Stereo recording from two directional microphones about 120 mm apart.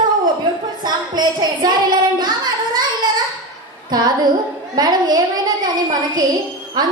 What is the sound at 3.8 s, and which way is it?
Music, 35° right (ahead or behind).